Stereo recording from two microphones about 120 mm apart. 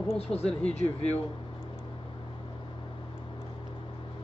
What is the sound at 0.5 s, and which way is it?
Speech, 10° left (ahead or behind).